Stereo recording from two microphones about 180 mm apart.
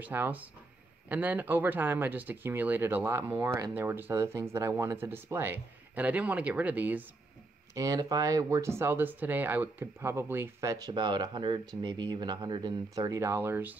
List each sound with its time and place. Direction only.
0.0 s speech: 10° right (ahead or behind)